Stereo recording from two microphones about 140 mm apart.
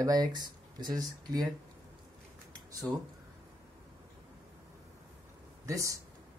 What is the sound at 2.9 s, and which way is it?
Speech, centre (ahead or behind).